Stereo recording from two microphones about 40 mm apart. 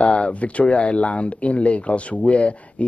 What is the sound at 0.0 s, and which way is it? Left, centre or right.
A man's voice, left.